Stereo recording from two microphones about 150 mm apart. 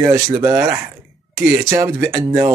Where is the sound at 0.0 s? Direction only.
20° right (ahead or behind).